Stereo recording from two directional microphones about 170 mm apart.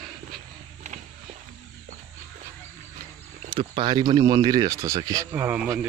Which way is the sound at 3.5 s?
30° right (ahead or behind).